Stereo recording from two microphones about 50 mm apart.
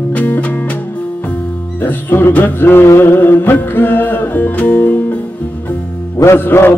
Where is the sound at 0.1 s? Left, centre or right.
Left.